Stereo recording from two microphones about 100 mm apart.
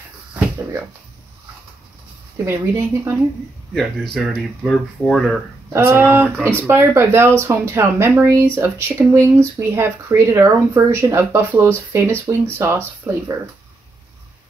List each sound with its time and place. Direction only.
2.4 s speech: 25° right (ahead or behind)
3.7 s speech: 5° left (ahead or behind)
5.7 s speech: 20° right (ahead or behind)